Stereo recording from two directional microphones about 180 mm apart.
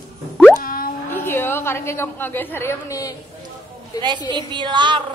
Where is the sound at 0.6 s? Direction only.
50° left (ahead or behind).